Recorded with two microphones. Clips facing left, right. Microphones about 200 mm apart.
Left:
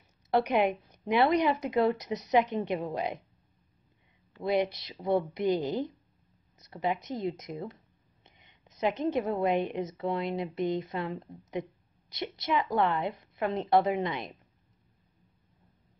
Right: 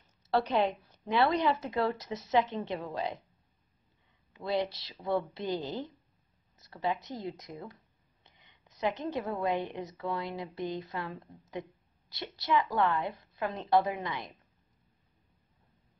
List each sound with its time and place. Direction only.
0.3 s a woman's voice: 15° left (ahead or behind)
4.4 s a woman's voice: 20° left (ahead or behind)